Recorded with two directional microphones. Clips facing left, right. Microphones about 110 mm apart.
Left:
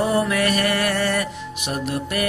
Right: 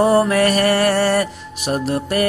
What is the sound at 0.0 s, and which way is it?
Music, 40° right (ahead or behind).